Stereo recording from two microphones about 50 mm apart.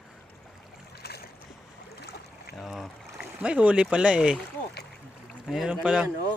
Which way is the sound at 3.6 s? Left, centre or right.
Centre.